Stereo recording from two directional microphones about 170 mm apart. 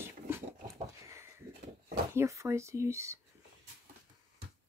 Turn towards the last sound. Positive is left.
turn(degrees=-15)  # may be behind; listen again after turning